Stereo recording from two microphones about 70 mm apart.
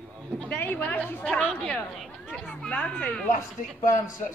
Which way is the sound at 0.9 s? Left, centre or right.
Left.